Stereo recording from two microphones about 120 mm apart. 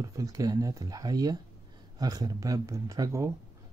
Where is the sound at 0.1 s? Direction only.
30° right (ahead or behind).